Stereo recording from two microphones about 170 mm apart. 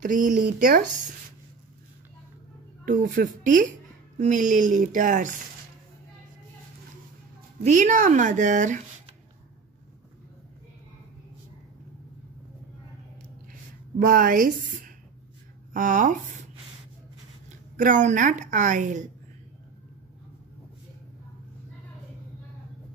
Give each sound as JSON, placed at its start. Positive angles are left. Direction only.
{"t": 0.0, "sound": "a woman's voice", "side_deg": -50}
{"t": 2.8, "sound": "speech", "side_deg": -50}
{"t": 7.6, "sound": "speech", "side_deg": -45}
{"t": 13.9, "sound": "a woman's voice", "side_deg": -55}
{"t": 17.7, "sound": "speech", "side_deg": -50}